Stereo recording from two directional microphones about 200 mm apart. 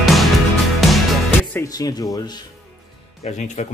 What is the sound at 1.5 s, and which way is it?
Speech, 15° left (ahead or behind).